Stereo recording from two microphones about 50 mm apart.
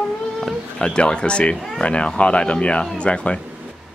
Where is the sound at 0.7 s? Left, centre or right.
Centre.